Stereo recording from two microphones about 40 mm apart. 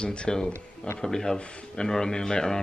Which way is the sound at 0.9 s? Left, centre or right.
Centre.